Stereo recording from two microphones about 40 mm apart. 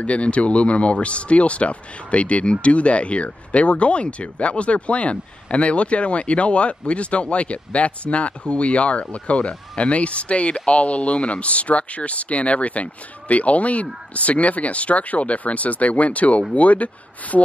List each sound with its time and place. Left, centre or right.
0.0 s speech: left